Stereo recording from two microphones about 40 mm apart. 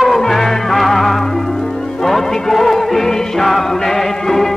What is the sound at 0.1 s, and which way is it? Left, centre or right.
Music, centre.